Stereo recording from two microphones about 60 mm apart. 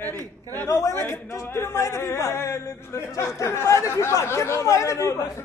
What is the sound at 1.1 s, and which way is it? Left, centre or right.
A man's voice, left.